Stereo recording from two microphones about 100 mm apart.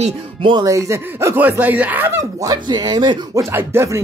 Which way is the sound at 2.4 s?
40° right (ahead or behind).